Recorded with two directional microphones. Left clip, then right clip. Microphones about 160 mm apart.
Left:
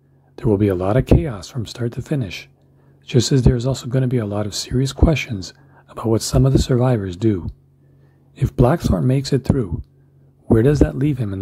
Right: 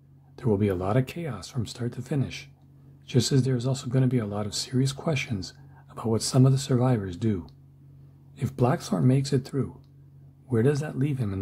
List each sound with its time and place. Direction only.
0.4 s speech: 30° left (ahead or behind)